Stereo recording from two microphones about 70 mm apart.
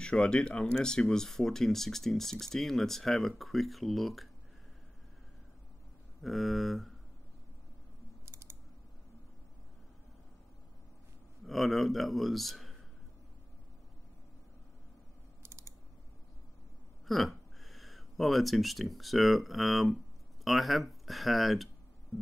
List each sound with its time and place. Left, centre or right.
0.0 s speech: centre
6.2 s speech: centre
8.3 s typing: right
11.4 s speech: centre
15.4 s typing: right
17.1 s speech: centre